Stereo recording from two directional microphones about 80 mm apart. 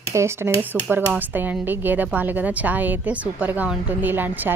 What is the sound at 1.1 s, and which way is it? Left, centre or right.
A woman's voice, right.